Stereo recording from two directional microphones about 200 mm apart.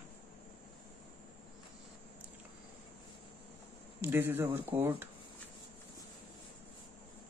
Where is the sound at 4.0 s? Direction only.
10° right (ahead or behind).